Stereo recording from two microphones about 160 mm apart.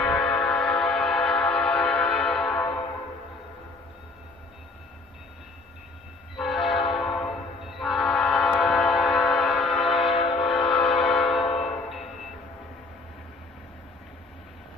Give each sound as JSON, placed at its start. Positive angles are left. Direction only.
{"t": 0.0, "sound": "train", "side_deg": 5}
{"t": 6.3, "sound": "train", "side_deg": 0}
{"t": 10.1, "sound": "train", "side_deg": 35}
{"t": 10.9, "sound": "train", "side_deg": 0}